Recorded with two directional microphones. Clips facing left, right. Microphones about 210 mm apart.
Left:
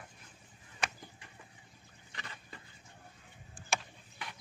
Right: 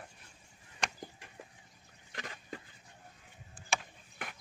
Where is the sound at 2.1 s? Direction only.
45° right (ahead or behind).